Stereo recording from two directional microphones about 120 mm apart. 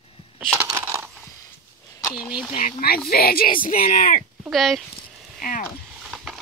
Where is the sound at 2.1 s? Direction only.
5° right (ahead or behind).